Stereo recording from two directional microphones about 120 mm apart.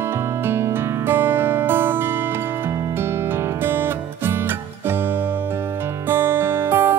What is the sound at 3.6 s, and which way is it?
Music, 20° right (ahead or behind).